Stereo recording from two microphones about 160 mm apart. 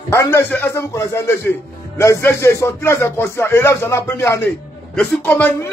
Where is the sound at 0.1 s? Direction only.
15° left (ahead or behind).